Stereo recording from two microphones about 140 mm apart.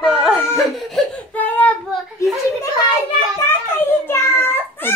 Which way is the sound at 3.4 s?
15° left (ahead or behind).